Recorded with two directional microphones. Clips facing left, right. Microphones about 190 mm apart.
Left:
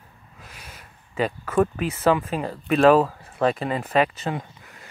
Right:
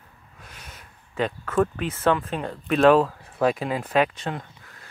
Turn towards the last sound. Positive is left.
turn(degrees=5)  # may be behind; listen again after turning